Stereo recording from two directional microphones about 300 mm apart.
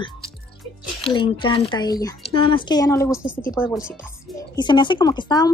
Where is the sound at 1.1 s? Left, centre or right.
Centre.